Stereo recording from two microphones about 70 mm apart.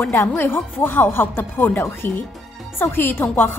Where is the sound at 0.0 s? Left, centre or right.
Left.